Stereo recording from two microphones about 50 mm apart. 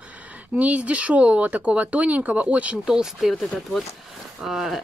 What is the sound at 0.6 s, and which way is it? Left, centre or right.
Speech, right.